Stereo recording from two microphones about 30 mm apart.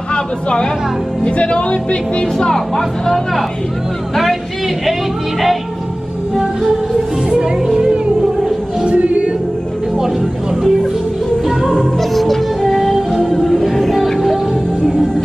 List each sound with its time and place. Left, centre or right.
0.1 s speech: left
2.4 s speech: centre
7.8 s music: right
8.8 s music: right
10.5 s music: centre
12.0 s music: centre
13.2 s music: left
13.5 s music: centre